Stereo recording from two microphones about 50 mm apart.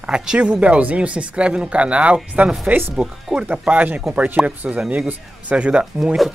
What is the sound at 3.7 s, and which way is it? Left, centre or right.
Speech, right.